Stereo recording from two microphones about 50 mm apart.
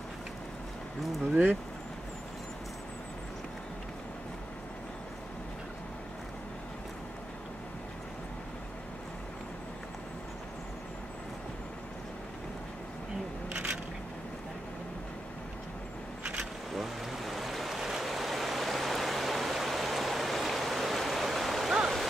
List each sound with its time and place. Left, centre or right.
1.3 s speech: right
13.5 s a sound: right
16.7 s waves: centre